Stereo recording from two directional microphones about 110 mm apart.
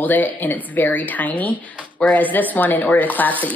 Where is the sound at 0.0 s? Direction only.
15° left (ahead or behind).